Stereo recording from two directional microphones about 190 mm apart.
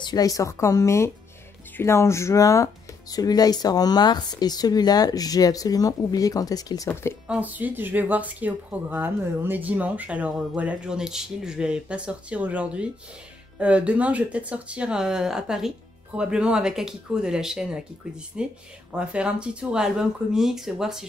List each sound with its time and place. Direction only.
0.0 s speech: 20° left (ahead or behind)
7.2 s speech: 10° right (ahead or behind)